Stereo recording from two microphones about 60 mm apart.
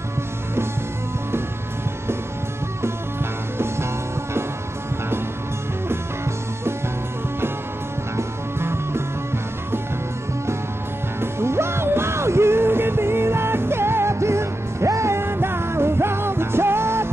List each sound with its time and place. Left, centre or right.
8.2 s music: right
11.1 s music: right